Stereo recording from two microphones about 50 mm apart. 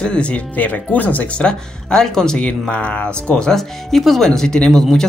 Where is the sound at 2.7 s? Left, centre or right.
Left.